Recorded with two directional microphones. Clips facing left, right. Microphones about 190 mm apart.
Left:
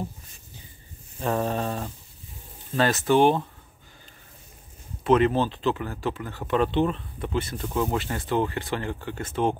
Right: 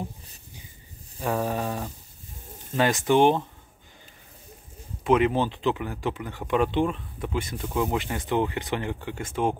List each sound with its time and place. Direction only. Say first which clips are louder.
1.2 s speech: left 1 dB; 10° right (ahead or behind)
5.0 s speech: left 1 dB; 10° right (ahead or behind)